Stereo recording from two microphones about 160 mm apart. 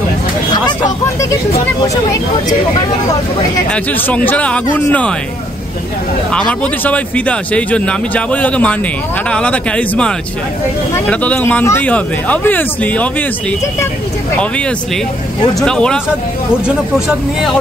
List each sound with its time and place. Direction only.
0.5 s a sound: 25° left (ahead or behind)
3.7 s speech: 10° left (ahead or behind)
6.3 s speech: 10° left (ahead or behind)
15.6 s speech: 5° left (ahead or behind)